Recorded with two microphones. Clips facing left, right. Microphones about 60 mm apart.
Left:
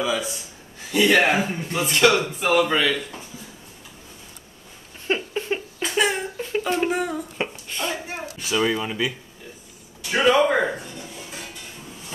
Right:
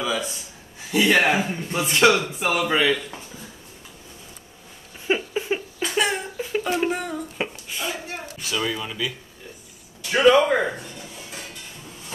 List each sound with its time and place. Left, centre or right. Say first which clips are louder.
0.0 s speech: left 1 dB; centre
1.9 s speech: even; centre
2.4 s speech: left 1 dB; centre
5.0 s a sound: right 1 dB; centre
8.1 s a sound: left 3 dB; centre
10.0 s a man's voice: right 2 dB; centre